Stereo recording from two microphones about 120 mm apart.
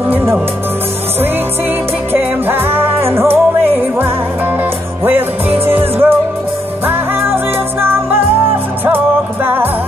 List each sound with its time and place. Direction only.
0.1 s music: 20° right (ahead or behind)
2.1 s music: 20° right (ahead or behind)